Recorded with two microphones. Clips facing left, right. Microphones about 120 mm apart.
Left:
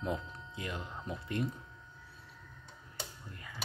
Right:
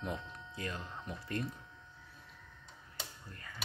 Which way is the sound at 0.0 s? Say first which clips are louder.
Left 4 dB; 20° left (ahead or behind).